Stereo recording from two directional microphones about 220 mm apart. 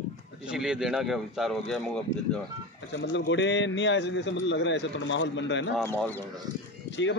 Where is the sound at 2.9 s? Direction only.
55° left (ahead or behind).